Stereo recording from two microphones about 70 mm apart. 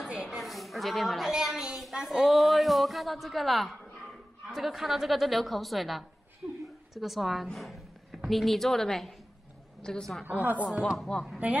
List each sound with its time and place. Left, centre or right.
0.1 s a sound: centre
0.4 s a sound: centre
4.5 s a woman's voice: centre
6.4 s a woman's voice: right
6.9 s a woman's voice: centre
10.2 s speech: right
11.1 s a woman's voice: centre